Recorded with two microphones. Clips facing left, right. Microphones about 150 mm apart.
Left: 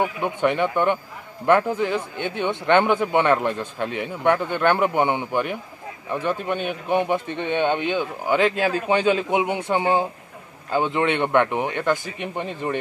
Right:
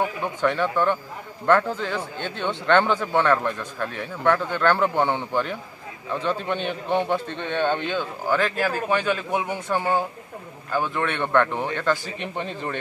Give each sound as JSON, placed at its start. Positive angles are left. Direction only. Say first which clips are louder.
{"t": 0.0, "sound": "a man's voice", "louder": "left 2 dB", "side_deg": 20}